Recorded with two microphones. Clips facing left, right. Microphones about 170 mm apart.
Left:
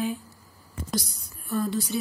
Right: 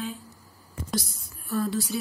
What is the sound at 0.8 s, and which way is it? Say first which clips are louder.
A woman's voice: even; centre (ahead or behind).